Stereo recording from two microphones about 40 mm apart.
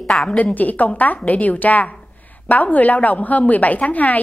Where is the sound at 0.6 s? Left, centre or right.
Left.